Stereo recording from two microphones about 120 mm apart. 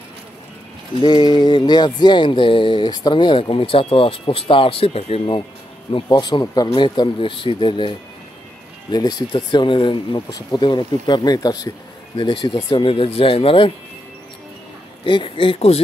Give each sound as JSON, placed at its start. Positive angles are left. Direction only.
{"t": 1.0, "sound": "speech", "side_deg": 40}
{"t": 5.9, "sound": "speech", "side_deg": 40}
{"t": 6.7, "sound": "speech", "side_deg": 45}
{"t": 9.3, "sound": "speech", "side_deg": 40}
{"t": 12.2, "sound": "speech", "side_deg": 45}
{"t": 15.0, "sound": "speech", "side_deg": 45}